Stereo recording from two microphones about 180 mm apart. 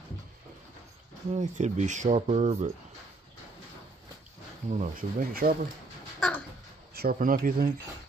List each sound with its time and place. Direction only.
1.3 s speech: 40° right (ahead or behind)
4.6 s speech: 50° right (ahead or behind)
6.1 s babbling: 5° left (ahead or behind)
6.9 s speech: 55° right (ahead or behind)